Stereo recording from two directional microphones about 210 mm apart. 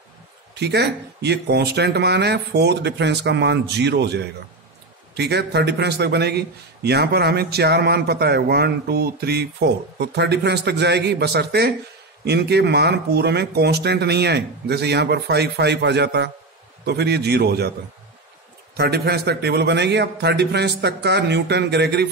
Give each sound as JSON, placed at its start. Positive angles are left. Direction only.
{"t": 0.6, "sound": "a man's voice", "side_deg": -50}
{"t": 18.8, "sound": "a man's voice", "side_deg": -50}